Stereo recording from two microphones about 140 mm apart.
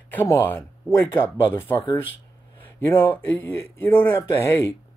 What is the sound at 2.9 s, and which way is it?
Speech, 15° left (ahead or behind).